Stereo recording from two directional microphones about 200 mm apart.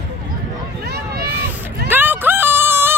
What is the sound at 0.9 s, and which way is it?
Run, 50° right (ahead or behind).